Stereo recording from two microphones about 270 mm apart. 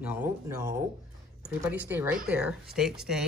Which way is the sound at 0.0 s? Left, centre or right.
Centre.